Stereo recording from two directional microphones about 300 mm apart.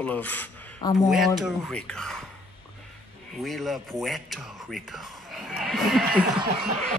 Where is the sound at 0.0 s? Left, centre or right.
Centre.